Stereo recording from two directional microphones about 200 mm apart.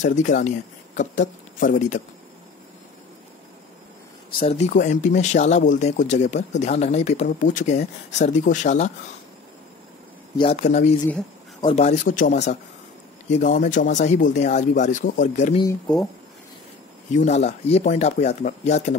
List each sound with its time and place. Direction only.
0.0 s speech: 40° left (ahead or behind)
4.3 s speech: 30° left (ahead or behind)
10.3 s speech: 30° left (ahead or behind)
17.1 s speech: 35° left (ahead or behind)